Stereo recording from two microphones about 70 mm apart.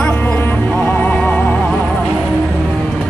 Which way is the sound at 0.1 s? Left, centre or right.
Left.